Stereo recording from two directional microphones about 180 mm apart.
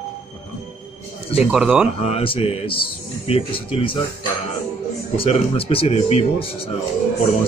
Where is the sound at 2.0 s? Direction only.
30° left (ahead or behind).